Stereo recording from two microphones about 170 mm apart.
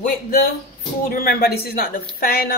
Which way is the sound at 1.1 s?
60° left (ahead or behind).